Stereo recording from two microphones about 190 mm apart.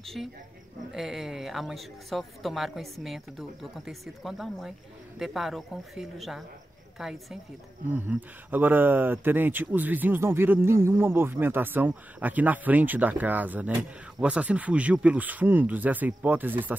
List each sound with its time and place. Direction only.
0.0 s speech: centre (ahead or behind)